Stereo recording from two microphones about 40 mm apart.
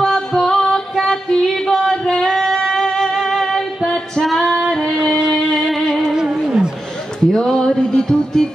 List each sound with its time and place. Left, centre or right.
0.0 s music: centre
4.6 s female singing: centre
5.5 s music: centre
7.2 s music: centre